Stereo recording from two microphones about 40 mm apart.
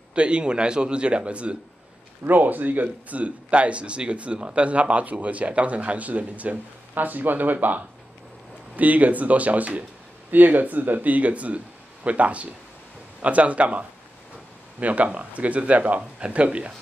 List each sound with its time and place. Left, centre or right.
0.1 s a man's voice: right
2.2 s speech: right